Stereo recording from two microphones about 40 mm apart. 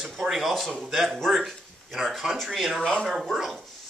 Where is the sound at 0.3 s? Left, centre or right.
Centre.